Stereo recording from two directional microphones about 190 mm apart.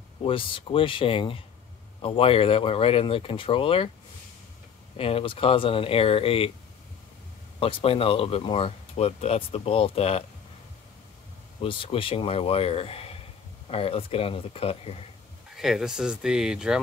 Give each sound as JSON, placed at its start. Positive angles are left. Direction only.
{"t": 0.2, "sound": "speech", "side_deg": 30}
{"t": 4.9, "sound": "speech", "side_deg": 30}
{"t": 7.5, "sound": "speech", "side_deg": 30}
{"t": 11.6, "sound": "speech", "side_deg": 30}
{"t": 15.5, "sound": "speech", "side_deg": 0}